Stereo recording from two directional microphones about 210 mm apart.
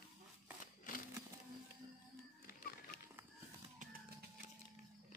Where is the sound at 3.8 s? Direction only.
45° right (ahead or behind).